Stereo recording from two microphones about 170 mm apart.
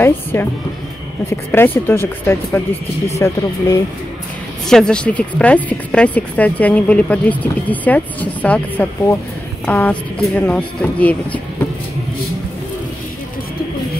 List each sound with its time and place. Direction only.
0.0 s speech: 10° left (ahead or behind)
4.6 s speech: 5° left (ahead or behind)